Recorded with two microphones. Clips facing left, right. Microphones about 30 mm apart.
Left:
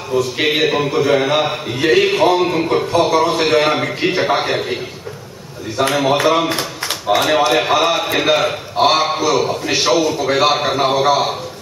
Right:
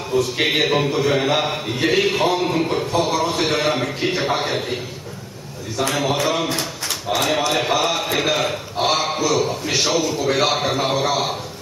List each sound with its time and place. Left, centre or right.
0.1 s a man's voice: centre
1.9 s a man's voice: left
2.1 s a man's voice: left
5.8 s a man's voice: left; by 11.3 s centre